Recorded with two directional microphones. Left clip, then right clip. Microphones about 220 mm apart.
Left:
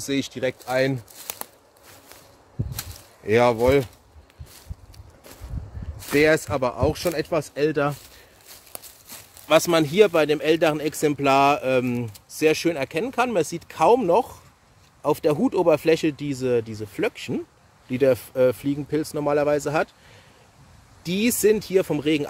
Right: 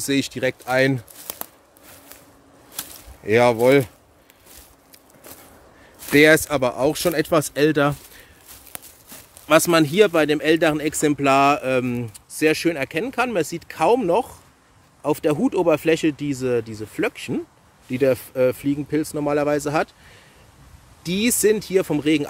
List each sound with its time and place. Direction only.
0.0 s speech: 15° right (ahead or behind)
2.7 s a sound: 5° right (ahead or behind)
6.1 s speech: 20° right (ahead or behind)
9.5 s speech: 10° right (ahead or behind)
21.0 s speech: 5° right (ahead or behind)